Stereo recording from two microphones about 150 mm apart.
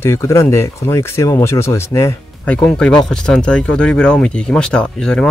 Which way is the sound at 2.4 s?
5° left (ahead or behind).